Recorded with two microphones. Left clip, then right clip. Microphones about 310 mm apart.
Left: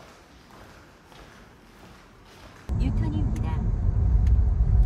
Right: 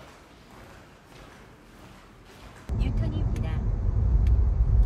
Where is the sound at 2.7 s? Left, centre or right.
Centre.